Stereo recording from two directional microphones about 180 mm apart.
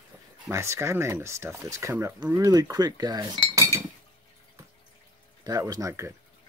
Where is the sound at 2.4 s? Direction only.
20° right (ahead or behind).